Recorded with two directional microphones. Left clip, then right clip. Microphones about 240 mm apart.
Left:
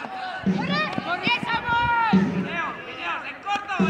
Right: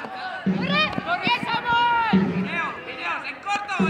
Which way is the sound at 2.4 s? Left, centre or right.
Right.